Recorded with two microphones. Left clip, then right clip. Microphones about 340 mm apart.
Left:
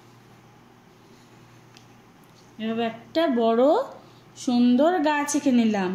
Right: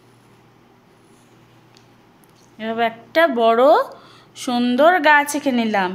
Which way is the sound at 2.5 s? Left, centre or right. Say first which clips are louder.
Right 7 dB; centre.